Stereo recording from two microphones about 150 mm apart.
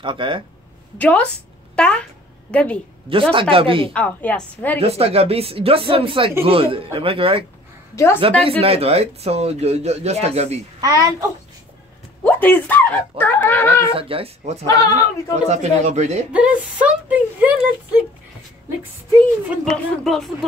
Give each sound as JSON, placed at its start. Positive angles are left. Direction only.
{"t": 0.0, "sound": "speech", "side_deg": -35}
{"t": 0.9, "sound": "a woman's voice", "side_deg": 10}
{"t": 3.1, "sound": "speech", "side_deg": -35}
{"t": 3.9, "sound": "a woman's voice", "side_deg": 10}
{"t": 4.7, "sound": "speech", "side_deg": -40}
{"t": 7.9, "sound": "a woman's voice", "side_deg": 20}
{"t": 8.2, "sound": "speech", "side_deg": -40}
{"t": 10.8, "sound": "a child's voice", "side_deg": -20}
{"t": 12.3, "sound": "a woman's voice", "side_deg": 10}
{"t": 13.9, "sound": "speech", "side_deg": -40}
{"t": 14.7, "sound": "speech", "side_deg": 25}
{"t": 15.4, "sound": "speech", "side_deg": -50}
{"t": 16.3, "sound": "speech", "side_deg": -10}
{"t": 19.5, "sound": "speech", "side_deg": 0}